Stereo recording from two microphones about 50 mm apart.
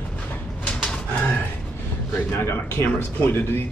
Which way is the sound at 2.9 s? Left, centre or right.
Left.